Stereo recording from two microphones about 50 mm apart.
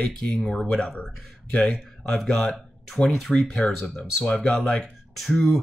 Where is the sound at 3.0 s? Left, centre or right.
Centre.